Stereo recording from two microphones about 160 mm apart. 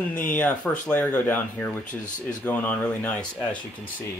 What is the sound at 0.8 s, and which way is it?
Speech, 10° left (ahead or behind).